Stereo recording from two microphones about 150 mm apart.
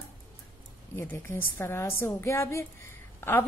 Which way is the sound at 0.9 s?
15° left (ahead or behind).